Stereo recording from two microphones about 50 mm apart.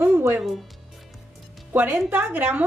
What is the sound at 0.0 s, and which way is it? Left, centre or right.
Music, right.